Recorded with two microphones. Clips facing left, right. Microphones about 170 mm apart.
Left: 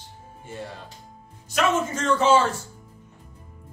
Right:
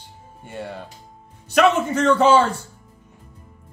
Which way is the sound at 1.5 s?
65° right (ahead or behind).